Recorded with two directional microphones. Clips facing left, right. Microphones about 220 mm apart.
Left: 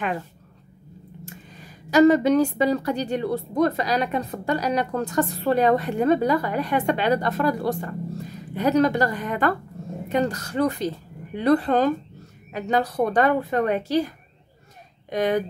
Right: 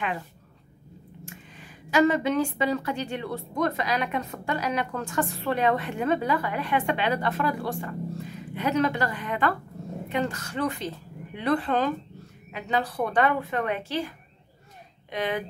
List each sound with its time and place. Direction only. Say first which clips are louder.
1.2 s a woman's voice: left 2 dB; 40° left (ahead or behind)